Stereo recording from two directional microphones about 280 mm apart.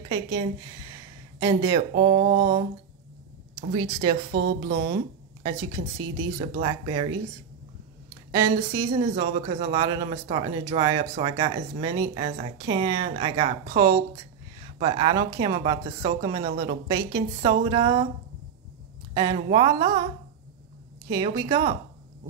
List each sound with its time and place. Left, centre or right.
0.1 s speech: centre
4.3 s speech: right
4.9 s speech: centre
8.3 s speech: centre
9.0 s speech: right
19.1 s speech: centre
21.1 s speech: centre